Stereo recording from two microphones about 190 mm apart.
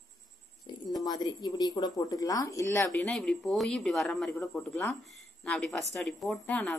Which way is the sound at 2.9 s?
5° left (ahead or behind).